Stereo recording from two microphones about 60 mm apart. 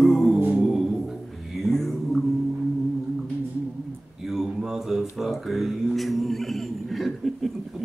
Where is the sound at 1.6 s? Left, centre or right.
Centre.